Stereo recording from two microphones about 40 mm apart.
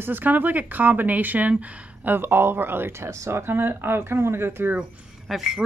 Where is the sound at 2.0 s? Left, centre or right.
Right.